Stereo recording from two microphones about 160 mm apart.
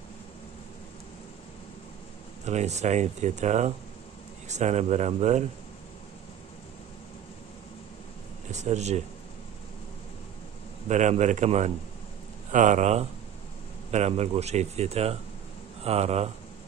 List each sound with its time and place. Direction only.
2.4 s speech: 45° right (ahead or behind)
8.5 s speech: 45° right (ahead or behind)
10.9 s speech: 50° right (ahead or behind)